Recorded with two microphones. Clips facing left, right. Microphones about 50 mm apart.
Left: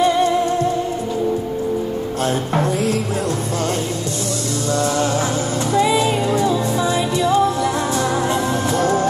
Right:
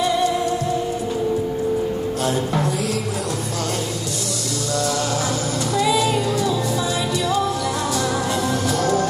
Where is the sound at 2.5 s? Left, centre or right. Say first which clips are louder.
Left 3 dB; left.